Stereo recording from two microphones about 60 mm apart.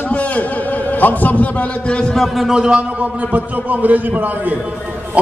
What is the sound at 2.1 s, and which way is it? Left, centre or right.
A man's voice, centre.